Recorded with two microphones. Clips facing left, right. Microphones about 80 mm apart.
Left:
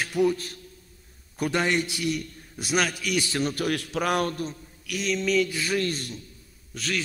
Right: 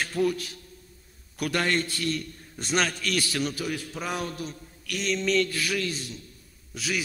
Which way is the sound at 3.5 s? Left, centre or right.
Left.